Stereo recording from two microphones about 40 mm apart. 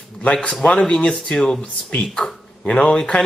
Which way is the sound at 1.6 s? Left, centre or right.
Left.